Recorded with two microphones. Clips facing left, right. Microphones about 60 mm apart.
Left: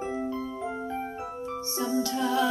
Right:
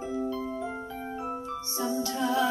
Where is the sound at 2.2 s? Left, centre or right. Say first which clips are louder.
Right 1 dB; right.